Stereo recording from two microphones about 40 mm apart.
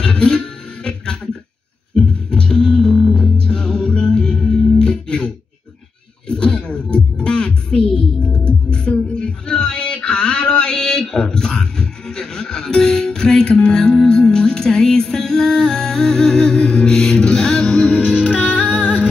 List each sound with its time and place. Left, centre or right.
0.0 s music: left
0.8 s a sound: left
2.0 s music: centre
16.5 s music: centre
18.0 s music: left